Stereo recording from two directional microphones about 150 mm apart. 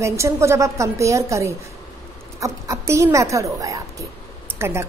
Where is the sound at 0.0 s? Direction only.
20° right (ahead or behind).